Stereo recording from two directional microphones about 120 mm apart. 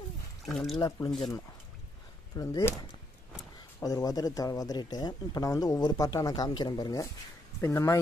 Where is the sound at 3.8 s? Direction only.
30° left (ahead or behind).